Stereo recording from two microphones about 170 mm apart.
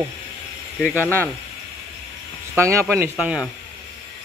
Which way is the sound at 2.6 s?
15° right (ahead or behind).